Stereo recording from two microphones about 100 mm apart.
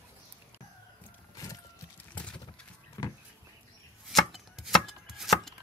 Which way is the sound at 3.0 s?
45° left (ahead or behind).